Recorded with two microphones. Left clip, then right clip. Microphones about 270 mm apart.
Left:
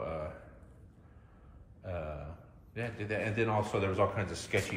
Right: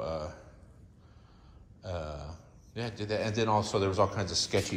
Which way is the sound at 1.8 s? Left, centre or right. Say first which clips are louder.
Right 2 dB; centre.